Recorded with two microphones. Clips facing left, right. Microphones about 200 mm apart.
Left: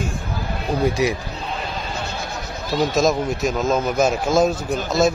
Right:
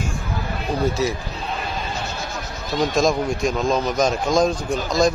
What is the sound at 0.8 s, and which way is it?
Speech, 15° left (ahead or behind).